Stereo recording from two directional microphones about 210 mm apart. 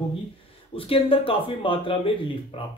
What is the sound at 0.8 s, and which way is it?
Speech, 25° left (ahead or behind).